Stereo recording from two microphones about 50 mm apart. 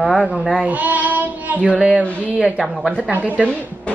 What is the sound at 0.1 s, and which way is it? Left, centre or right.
Speech, right.